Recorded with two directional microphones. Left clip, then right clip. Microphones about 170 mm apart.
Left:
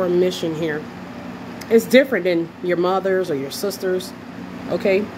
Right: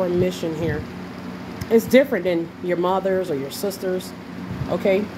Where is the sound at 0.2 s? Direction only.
20° left (ahead or behind).